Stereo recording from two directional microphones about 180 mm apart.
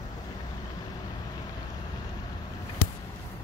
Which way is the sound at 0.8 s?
20° left (ahead or behind).